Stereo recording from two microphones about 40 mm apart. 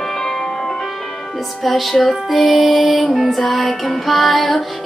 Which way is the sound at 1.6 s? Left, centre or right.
Centre.